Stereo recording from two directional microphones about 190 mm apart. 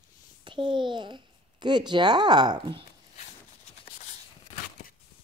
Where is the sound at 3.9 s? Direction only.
40° left (ahead or behind).